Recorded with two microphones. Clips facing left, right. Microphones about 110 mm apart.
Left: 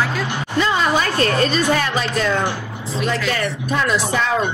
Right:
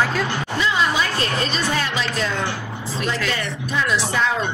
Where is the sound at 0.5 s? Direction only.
50° left (ahead or behind).